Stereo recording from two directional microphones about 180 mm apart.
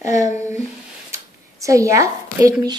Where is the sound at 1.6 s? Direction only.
15° right (ahead or behind).